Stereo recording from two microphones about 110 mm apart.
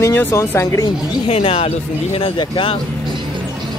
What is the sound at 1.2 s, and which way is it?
Speech, 65° left (ahead or behind).